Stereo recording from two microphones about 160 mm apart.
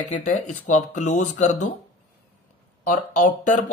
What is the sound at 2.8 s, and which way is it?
Speech, 55° left (ahead or behind).